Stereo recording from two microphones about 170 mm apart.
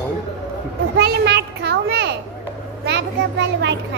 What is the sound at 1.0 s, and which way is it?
A child's voice, 75° right (ahead or behind).